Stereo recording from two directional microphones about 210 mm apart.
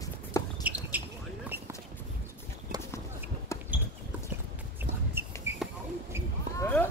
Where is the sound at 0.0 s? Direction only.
15° left (ahead or behind).